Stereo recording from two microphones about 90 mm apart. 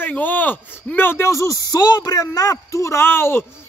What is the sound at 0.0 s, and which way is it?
Speech, 20° left (ahead or behind).